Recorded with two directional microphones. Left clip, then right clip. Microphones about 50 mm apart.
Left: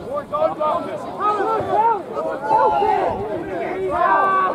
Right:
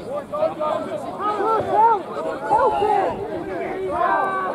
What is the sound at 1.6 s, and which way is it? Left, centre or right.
Speech, centre.